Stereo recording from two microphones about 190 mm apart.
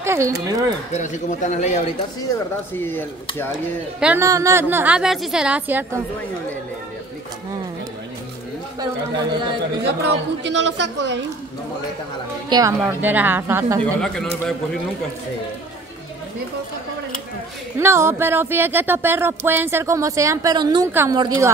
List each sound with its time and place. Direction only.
0.0 s speech: 15° right (ahead or behind)
0.9 s a man's voice: 40° left (ahead or behind)
2.0 s speech: 15° left (ahead or behind)
4.0 s speech: 10° right (ahead or behind)
9.8 s a woman's voice: 65° right (ahead or behind)
12.4 s speech: 20° right (ahead or behind)
12.8 s speech: 10° right (ahead or behind)
13.8 s speech: 5° left (ahead or behind)
17.7 s speech: 15° right (ahead or behind)